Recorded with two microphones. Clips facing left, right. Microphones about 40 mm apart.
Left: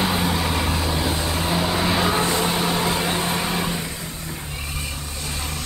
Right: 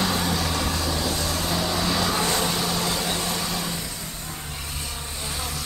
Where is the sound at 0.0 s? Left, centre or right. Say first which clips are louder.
Left 3 dB; left.